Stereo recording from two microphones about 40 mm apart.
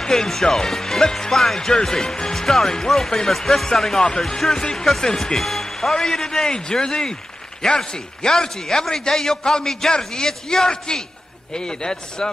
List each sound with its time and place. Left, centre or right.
0.0 s a man's voice: centre